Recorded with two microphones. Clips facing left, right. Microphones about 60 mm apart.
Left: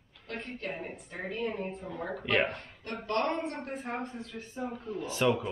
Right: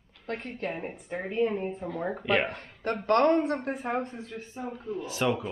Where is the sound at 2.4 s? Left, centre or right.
Right.